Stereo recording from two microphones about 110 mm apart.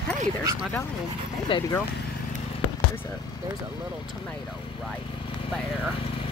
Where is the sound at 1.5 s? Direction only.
50° left (ahead or behind).